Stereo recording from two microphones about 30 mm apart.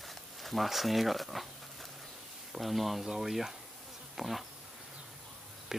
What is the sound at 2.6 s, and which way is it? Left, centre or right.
Speech, centre.